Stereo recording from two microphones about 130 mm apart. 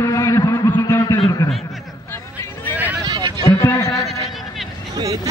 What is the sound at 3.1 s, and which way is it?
Run, 35° right (ahead or behind).